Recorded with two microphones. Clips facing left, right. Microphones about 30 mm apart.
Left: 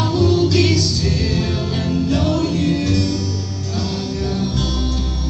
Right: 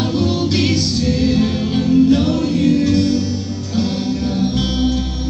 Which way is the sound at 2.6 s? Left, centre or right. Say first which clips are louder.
Right 5 dB; left.